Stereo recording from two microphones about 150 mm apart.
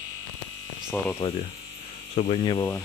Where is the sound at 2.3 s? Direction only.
35° left (ahead or behind).